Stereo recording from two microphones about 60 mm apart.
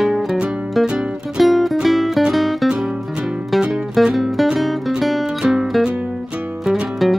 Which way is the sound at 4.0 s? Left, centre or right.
Centre.